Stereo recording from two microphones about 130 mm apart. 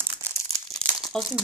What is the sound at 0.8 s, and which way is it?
Crumpling, 5° left (ahead or behind).